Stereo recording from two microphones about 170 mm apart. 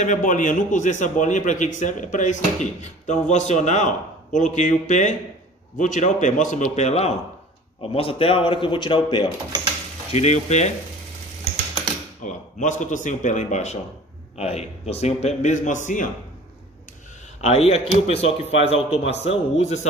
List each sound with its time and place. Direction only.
0.0 s speech: 50° left (ahead or behind); by 9.3 s 25° left (ahead or behind)
10.1 s a man's voice: 40° left (ahead or behind)
12.3 s a man's voice: 45° left (ahead or behind)
17.4 s a man's voice: 40° left (ahead or behind)